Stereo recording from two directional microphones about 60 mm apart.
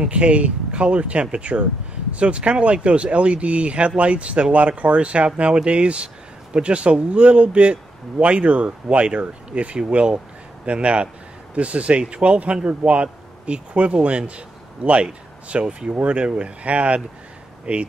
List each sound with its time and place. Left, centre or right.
0.0 s a man's voice: centre